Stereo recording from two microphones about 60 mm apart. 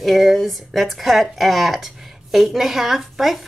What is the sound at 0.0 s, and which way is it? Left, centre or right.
A woman's voice, centre.